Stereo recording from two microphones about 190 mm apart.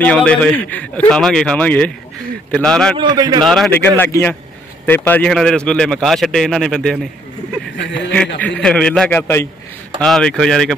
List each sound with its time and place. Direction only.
0.0 s a man's voice: 5° left (ahead or behind)
3.0 s a man's voice: 20° right (ahead or behind)
3.4 s a man's voice: centre (ahead or behind)